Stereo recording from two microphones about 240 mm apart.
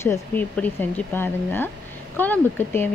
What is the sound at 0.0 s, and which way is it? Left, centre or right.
A woman's voice, centre.